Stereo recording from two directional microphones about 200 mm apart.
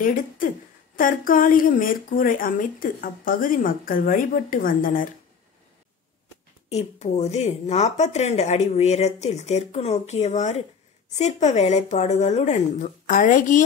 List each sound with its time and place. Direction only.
0.0 s speech: 45° left (ahead or behind)
6.7 s speech: 30° left (ahead or behind)